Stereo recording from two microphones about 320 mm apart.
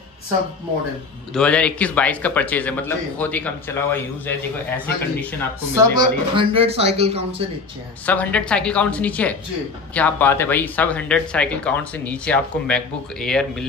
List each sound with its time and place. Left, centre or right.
1.3 s speech: centre
5.8 s speech: centre
8.0 s speech: centre